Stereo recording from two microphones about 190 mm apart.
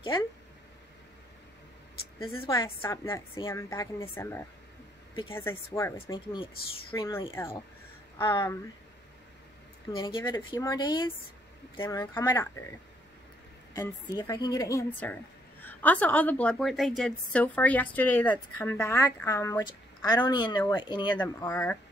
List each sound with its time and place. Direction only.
2.1 s speech: 30° left (ahead or behind)
2.8 s a woman's voice: 15° left (ahead or behind)
6.9 s a woman's voice: 15° left (ahead or behind)
8.2 s speech: 25° left (ahead or behind)
9.9 s speech: 25° left (ahead or behind)
13.7 s a woman's voice: 15° left (ahead or behind)
21.2 s a woman's voice: 10° left (ahead or behind)